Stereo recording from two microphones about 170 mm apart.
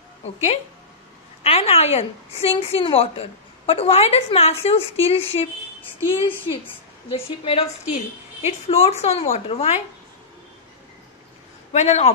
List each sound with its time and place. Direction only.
1.4 s a woman's voice: 35° left (ahead or behind)
11.7 s a woman's voice: 40° left (ahead or behind)